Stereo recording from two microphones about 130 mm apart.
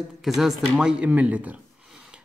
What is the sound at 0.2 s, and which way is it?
A man's voice, centre (ahead or behind).